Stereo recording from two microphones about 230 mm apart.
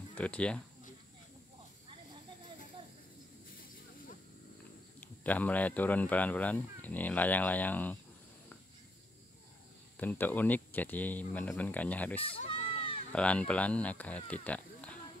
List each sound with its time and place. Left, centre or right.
0.1 s speech: centre
5.0 s speech: centre
9.9 s speech: centre
12.2 s a sound: left
13.1 s speech: centre